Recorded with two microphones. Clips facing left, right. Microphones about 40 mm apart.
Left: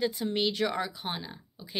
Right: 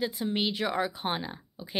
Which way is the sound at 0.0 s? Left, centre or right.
Centre.